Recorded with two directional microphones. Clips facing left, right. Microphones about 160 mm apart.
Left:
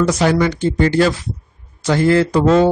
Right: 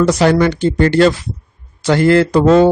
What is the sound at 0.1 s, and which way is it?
Speech, 65° right (ahead or behind).